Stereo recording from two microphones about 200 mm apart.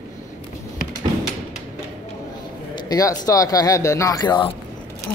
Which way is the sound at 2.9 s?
15° left (ahead or behind).